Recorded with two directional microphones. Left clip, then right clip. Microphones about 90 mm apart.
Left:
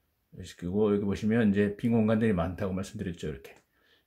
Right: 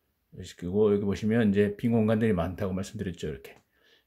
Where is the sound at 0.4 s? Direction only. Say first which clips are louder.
Right 3 dB; 30° right (ahead or behind).